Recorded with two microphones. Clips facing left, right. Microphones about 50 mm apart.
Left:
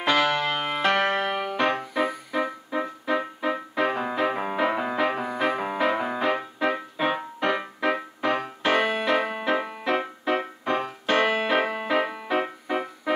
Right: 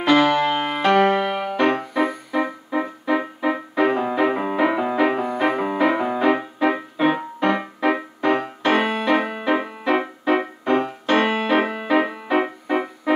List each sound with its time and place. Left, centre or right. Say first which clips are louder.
0.0 s music: right 6 dB; centre
1.5 s music: right 5 dB; centre